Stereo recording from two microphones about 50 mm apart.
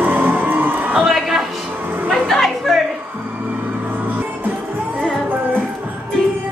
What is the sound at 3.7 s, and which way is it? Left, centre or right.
Music, right.